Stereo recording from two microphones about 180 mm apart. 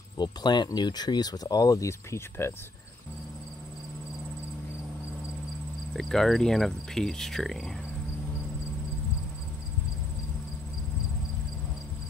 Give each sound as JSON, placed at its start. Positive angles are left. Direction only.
{"t": 0.2, "sound": "speech", "side_deg": 25}
{"t": 5.9, "sound": "speech", "side_deg": 0}